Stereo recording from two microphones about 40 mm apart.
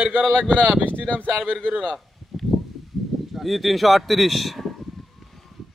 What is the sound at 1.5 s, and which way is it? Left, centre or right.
Speech, right.